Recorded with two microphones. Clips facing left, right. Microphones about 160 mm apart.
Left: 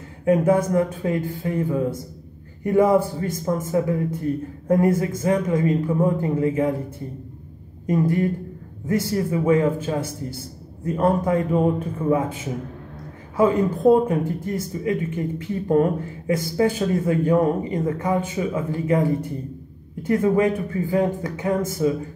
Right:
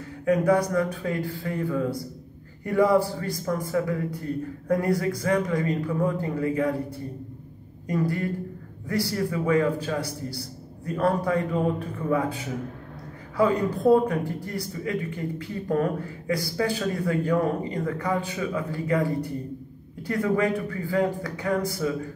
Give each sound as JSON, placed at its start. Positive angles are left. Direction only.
{"t": 0.2, "sound": "speech", "side_deg": 25}
{"t": 7.8, "sound": "speech", "side_deg": 20}